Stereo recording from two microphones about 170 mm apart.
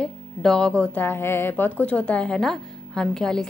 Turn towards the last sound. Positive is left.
turn(degrees=5)  # may be behind; listen again after turning